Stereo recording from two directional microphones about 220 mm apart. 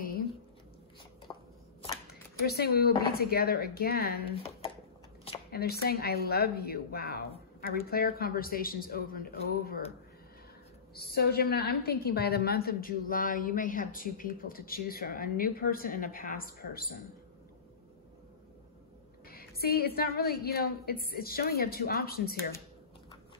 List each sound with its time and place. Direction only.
2.0 s a woman's voice: 45° left (ahead or behind)
4.4 s a sound: 25° left (ahead or behind)
5.5 s a woman's voice: 45° left (ahead or behind)
11.0 s a woman's voice: 45° left (ahead or behind)
19.2 s a woman's voice: 45° left (ahead or behind)